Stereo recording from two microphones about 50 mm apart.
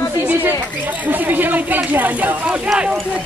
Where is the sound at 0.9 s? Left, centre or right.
Right.